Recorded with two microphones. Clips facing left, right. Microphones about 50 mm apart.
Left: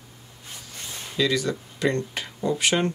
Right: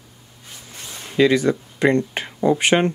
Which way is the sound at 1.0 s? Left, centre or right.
Right.